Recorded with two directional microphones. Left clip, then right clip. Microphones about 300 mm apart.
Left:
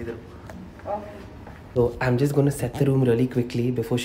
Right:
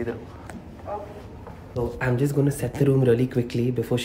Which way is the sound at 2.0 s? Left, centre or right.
Centre.